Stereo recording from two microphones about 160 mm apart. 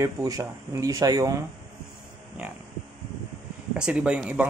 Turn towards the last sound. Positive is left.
turn(degrees=-10)  # may be behind; listen again after turning